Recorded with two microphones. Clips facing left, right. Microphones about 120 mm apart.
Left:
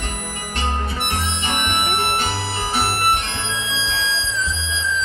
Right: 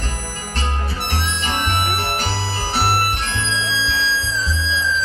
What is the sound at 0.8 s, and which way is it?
Music, 25° left (ahead or behind).